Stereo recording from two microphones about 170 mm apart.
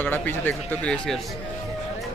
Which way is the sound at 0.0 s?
10° left (ahead or behind).